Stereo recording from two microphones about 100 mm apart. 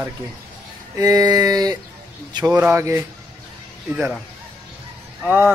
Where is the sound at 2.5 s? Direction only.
20° right (ahead or behind).